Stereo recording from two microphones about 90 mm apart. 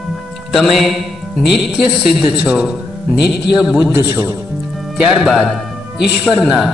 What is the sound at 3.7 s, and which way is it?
Speech, 20° right (ahead or behind).